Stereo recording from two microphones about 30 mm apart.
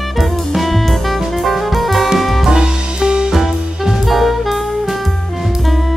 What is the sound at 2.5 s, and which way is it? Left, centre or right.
Music, right.